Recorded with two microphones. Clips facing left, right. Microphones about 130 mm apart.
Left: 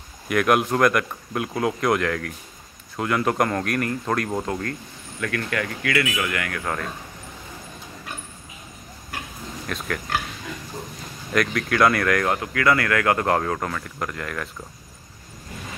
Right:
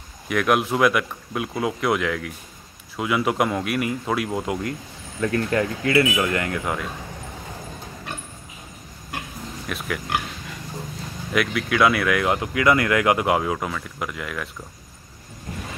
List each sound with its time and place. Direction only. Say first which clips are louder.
0.3 s speech: left 1 dB; centre (ahead or behind)
5.2 s a sound: right 5 dB; 25° right (ahead or behind)
6.6 s speech: right 1 dB; 10° right (ahead or behind)
9.7 s speech: even; 5° right (ahead or behind)
11.3 s speech: even; 5° right (ahead or behind)
12.3 s speech: right 1 dB; 20° right (ahead or behind)